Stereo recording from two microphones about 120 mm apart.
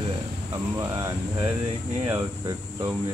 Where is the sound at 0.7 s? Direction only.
25° right (ahead or behind).